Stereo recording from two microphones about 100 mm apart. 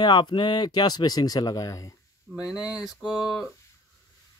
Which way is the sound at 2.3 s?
10° right (ahead or behind).